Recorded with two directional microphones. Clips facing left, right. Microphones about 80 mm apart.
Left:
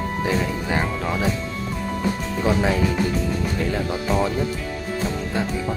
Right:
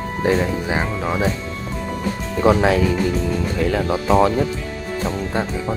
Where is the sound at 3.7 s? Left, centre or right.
Right.